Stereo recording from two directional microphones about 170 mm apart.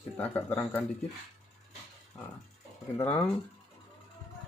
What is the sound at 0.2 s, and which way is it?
Speech, 10° left (ahead or behind).